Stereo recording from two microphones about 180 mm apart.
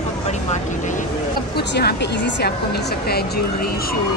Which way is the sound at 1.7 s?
65° left (ahead or behind).